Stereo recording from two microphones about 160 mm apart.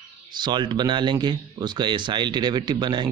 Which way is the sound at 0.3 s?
30° right (ahead or behind).